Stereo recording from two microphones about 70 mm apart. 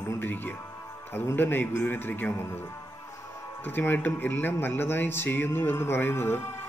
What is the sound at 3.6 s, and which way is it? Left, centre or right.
Speech, left.